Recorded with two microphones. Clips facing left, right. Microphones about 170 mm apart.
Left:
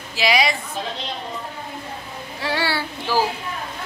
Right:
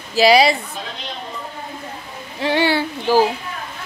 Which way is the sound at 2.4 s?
20° right (ahead or behind).